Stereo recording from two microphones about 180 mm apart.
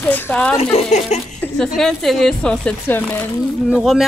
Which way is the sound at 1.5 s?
Centre (ahead or behind).